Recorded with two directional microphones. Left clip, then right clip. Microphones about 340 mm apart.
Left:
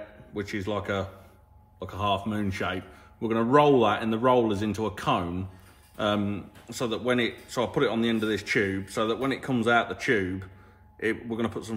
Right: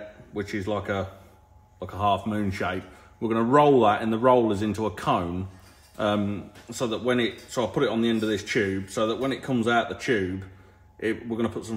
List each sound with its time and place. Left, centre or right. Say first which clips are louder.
0.3 s speech: right 2 dB; centre